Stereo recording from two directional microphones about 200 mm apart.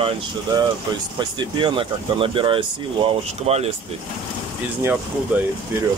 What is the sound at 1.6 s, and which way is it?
Speech, 25° right (ahead or behind).